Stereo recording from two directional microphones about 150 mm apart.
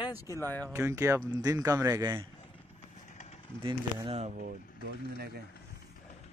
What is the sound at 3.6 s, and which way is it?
Speech, 35° right (ahead or behind).